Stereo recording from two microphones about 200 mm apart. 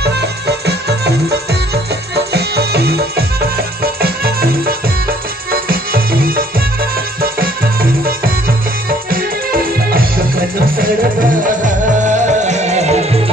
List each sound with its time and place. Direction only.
0.0 s music: 55° right (ahead or behind); by 12.9 s 35° right (ahead or behind)